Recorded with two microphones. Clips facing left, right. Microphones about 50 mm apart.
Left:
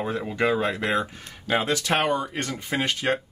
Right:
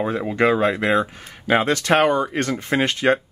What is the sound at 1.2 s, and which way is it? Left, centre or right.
Speech, centre.